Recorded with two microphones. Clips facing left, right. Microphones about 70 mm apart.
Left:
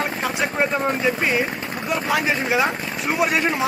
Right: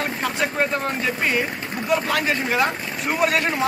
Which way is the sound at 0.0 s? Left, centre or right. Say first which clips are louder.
Left 1 dB; centre.